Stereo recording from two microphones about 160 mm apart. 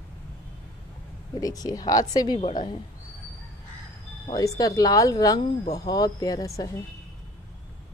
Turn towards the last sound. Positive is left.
turn(degrees=20)  # may be behind; listen again after turning